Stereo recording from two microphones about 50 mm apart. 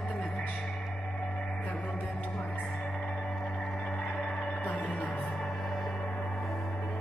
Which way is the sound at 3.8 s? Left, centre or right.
Left.